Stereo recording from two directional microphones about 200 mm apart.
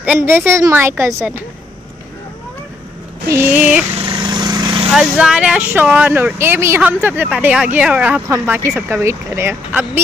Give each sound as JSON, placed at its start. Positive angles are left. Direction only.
{"t": 0.0, "sound": "speech", "side_deg": -10}
{"t": 3.5, "sound": "speech", "side_deg": -10}
{"t": 4.0, "sound": "vehicle", "side_deg": -25}
{"t": 4.9, "sound": "speech", "side_deg": -5}